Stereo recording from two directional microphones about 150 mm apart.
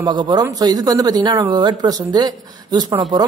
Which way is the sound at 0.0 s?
30° right (ahead or behind).